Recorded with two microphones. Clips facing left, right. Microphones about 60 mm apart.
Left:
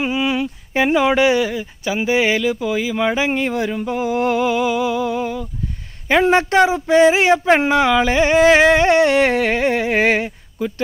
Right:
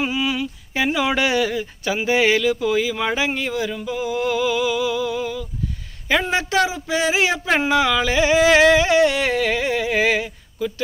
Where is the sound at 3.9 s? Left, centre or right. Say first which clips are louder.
Left 3 dB; left.